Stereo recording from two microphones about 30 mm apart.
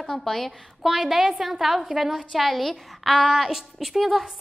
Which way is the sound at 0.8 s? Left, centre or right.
Centre.